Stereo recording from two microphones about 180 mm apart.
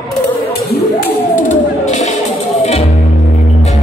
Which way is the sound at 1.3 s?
45° left (ahead or behind).